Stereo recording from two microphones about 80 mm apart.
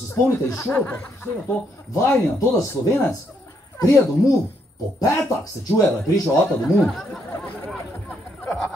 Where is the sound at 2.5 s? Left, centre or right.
Left.